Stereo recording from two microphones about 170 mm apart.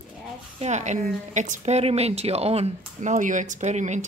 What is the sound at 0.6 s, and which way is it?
A woman's voice, 45° right (ahead or behind).